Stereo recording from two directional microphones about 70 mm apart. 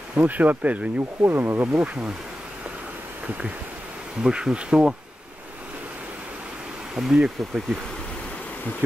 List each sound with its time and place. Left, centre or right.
0.1 s speech: right
1.2 s speech: right
1.8 s bee: centre
4.2 s bee: centre
7.0 s bee: centre